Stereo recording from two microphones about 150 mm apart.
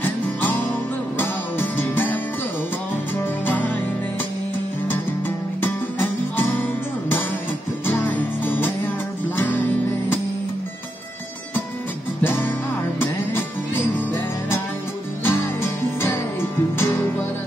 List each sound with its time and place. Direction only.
0.0 s music: 10° left (ahead or behind)
7.8 s music: 10° left (ahead or behind)
15.2 s music: 15° left (ahead or behind)